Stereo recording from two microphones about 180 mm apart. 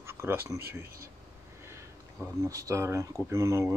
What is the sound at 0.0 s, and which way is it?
Speech, 15° right (ahead or behind).